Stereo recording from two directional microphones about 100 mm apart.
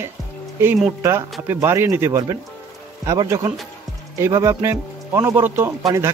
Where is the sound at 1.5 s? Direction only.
25° right (ahead or behind).